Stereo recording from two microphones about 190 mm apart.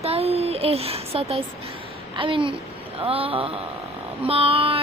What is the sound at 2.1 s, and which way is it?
Child singing, 25° right (ahead or behind).